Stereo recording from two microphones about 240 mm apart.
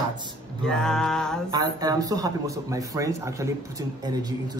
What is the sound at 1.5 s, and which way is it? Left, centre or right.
Speech, centre.